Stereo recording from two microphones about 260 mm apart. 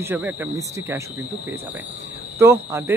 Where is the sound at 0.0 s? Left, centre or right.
Centre.